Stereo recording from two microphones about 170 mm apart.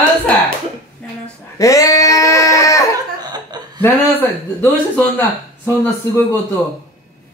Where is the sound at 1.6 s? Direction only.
20° left (ahead or behind).